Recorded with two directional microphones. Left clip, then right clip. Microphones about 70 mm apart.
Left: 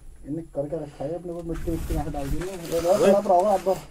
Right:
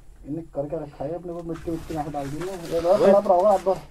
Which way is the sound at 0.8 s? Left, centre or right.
Left.